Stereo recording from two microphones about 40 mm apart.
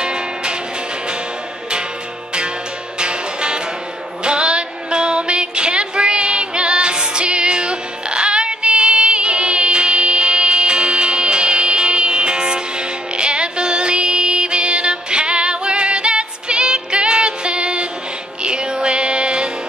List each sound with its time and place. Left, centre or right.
0.0 s music: right
3.0 s music: right